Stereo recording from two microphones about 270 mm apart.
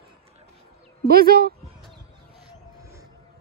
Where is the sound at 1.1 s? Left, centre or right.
Right.